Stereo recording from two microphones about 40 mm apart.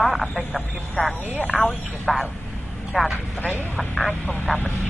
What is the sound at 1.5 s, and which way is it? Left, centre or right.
Speech, right.